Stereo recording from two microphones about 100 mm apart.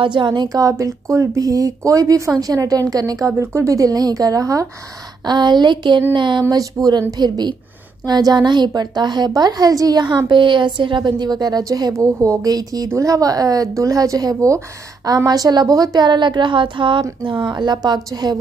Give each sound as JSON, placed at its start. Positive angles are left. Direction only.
{"t": 0.0, "sound": "a woman's voice", "side_deg": -50}
{"t": 5.2, "sound": "a woman's voice", "side_deg": -45}
{"t": 6.4, "sound": "a woman's voice", "side_deg": -35}